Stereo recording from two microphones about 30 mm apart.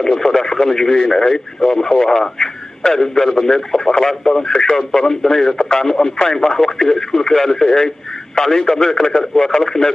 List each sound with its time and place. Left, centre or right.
0.0 s a man's voice: centre